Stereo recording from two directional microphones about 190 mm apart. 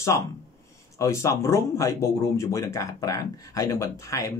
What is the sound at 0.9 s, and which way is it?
Speech, 15° left (ahead or behind).